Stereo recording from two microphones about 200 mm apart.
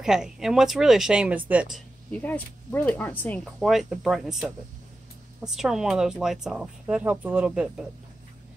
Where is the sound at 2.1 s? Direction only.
10° left (ahead or behind).